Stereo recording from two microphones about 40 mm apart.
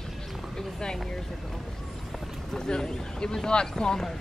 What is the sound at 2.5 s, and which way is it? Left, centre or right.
Boat, centre.